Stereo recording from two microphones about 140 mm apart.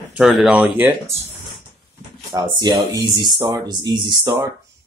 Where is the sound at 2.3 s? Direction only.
30° right (ahead or behind).